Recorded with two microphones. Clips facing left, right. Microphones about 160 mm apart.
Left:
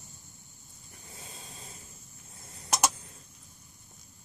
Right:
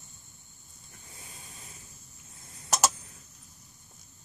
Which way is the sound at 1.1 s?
25° left (ahead or behind).